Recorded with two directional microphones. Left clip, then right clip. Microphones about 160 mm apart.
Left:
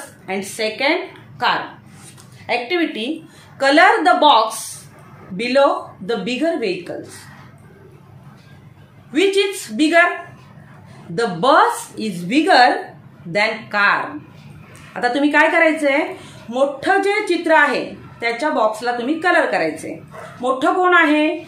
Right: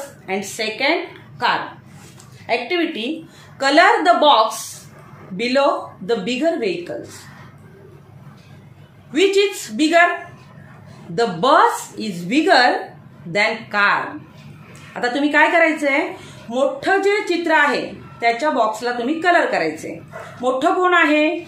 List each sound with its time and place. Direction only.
0.3 s a woman's voice: 15° left (ahead or behind)
9.1 s a woman's voice: 15° left (ahead or behind)
11.1 s a woman's voice: 15° left (ahead or behind)